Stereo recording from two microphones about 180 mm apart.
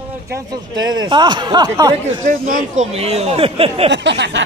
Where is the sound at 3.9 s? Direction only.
80° right.